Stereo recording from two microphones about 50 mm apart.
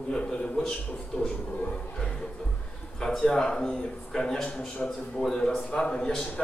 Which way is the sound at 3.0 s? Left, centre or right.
Centre.